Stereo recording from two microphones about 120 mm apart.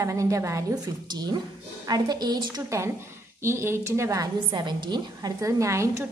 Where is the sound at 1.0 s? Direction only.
35° right (ahead or behind).